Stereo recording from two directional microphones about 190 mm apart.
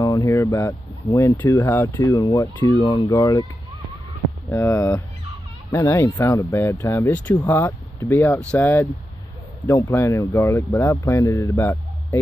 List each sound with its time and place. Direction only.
0.0 s speech: 15° left (ahead or behind)
4.5 s speech: 15° left (ahead or behind)